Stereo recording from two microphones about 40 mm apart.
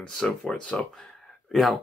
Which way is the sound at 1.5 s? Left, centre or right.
Centre.